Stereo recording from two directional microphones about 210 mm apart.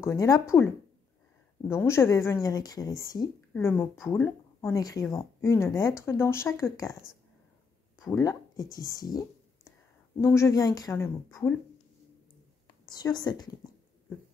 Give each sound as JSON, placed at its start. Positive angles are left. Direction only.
{"t": 0.0, "sound": "speech", "side_deg": 15}
{"t": 1.7, "sound": "speech", "side_deg": 10}
{"t": 8.0, "sound": "speech", "side_deg": 15}
{"t": 10.1, "sound": "speech", "side_deg": 10}
{"t": 12.9, "sound": "a woman's voice", "side_deg": 20}